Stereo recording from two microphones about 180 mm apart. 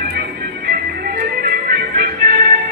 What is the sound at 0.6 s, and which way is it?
Music, 60° right (ahead or behind).